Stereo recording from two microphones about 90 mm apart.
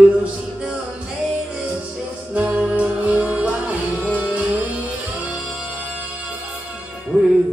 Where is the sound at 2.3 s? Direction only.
15° right (ahead or behind).